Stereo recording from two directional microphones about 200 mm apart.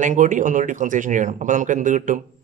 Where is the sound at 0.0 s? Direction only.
40° right (ahead or behind).